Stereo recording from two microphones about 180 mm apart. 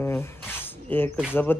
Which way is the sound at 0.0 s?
15° left (ahead or behind).